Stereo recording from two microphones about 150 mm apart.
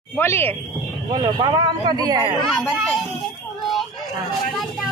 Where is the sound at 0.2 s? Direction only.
15° left (ahead or behind).